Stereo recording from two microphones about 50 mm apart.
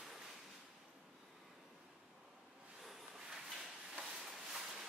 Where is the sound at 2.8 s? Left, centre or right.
Centre.